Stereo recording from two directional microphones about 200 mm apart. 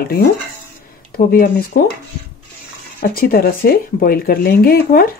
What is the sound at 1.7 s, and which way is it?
Speech, 45° left (ahead or behind).